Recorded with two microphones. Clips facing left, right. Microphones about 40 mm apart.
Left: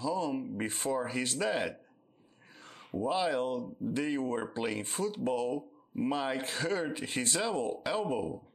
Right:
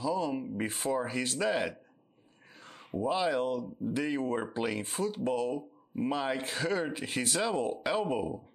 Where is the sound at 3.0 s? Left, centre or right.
Centre.